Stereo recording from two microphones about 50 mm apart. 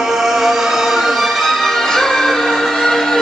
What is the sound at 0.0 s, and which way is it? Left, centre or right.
Music, centre.